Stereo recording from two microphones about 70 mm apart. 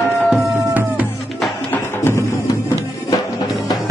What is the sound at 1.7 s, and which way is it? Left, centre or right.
Music, left.